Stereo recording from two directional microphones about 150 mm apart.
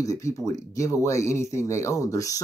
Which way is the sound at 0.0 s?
20° left (ahead or behind).